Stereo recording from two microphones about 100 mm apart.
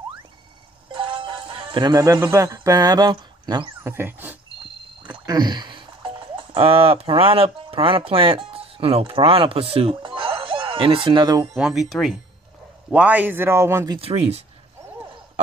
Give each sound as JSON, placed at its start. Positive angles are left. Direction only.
{"t": 0.9, "sound": "music", "side_deg": -55}
{"t": 2.3, "sound": "speech", "side_deg": -30}
{"t": 3.8, "sound": "speech", "side_deg": -25}
{"t": 5.0, "sound": "speech", "side_deg": -45}
{"t": 11.5, "sound": "speech", "side_deg": -5}
{"t": 12.9, "sound": "speech", "side_deg": -15}
{"t": 14.0, "sound": "speech", "side_deg": -90}